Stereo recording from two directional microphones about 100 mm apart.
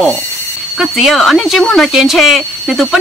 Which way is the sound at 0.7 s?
Centre (ahead or behind).